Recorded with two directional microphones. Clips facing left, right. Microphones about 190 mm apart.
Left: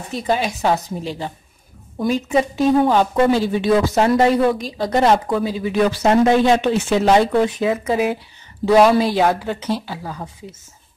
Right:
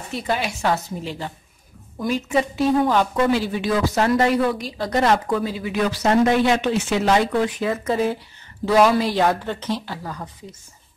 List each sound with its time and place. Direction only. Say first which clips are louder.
0.3 s a woman's voice: left 4 dB; 20° left (ahead or behind)
2.0 s a woman's voice: left 3 dB; 25° left (ahead or behind)
5.3 s a woman's voice: left 2 dB; 10° left (ahead or behind)
5.6 s a woman's voice: left 5 dB; 25° left (ahead or behind)
7.7 s a woman's voice: left 2 dB; 10° left (ahead or behind)